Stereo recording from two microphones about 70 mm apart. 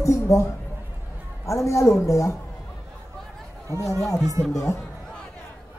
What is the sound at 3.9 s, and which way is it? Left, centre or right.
Speech, centre.